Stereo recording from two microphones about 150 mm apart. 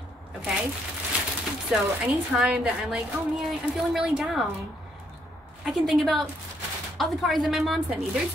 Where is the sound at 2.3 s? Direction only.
5° right (ahead or behind).